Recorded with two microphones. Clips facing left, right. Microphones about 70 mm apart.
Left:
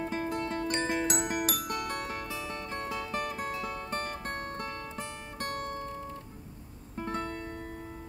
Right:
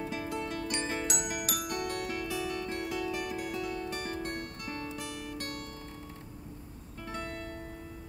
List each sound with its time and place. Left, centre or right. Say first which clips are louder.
0.0 s music: left 3 dB; left
7.0 s music: left 5 dB; left